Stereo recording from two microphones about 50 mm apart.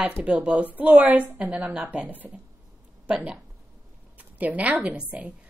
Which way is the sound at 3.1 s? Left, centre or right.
Right.